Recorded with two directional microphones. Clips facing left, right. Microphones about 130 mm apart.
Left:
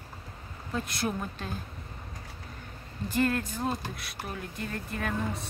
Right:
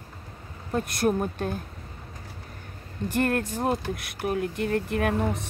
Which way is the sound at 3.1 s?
60° right (ahead or behind).